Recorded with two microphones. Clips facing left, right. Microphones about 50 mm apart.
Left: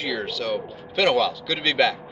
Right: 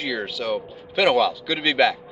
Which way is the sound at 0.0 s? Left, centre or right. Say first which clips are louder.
Even; centre.